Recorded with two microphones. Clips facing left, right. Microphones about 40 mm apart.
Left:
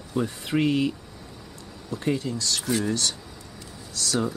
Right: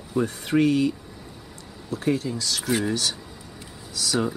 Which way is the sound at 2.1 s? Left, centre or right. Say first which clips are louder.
Right 1 dB; centre.